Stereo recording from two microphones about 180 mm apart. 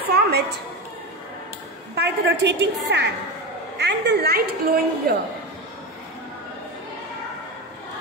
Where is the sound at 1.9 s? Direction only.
65° right (ahead or behind).